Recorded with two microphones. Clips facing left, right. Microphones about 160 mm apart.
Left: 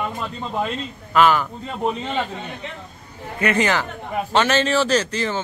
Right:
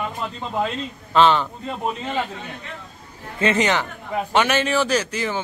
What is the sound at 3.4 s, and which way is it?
A man's voice, 20° right (ahead or behind).